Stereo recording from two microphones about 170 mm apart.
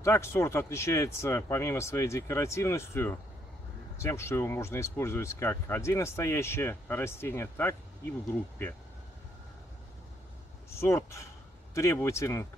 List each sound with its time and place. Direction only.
0.0 s speech: 15° left (ahead or behind)
10.7 s speech: 15° left (ahead or behind)